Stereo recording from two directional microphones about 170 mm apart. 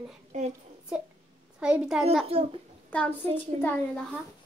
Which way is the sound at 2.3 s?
35° right (ahead or behind).